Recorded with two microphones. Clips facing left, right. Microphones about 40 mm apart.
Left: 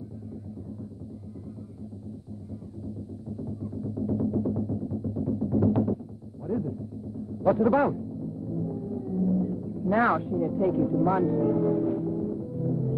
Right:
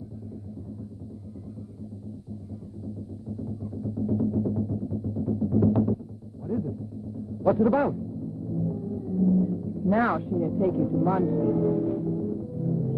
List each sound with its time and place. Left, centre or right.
3.3 s music: centre
7.4 s speech: centre
8.5 s music: centre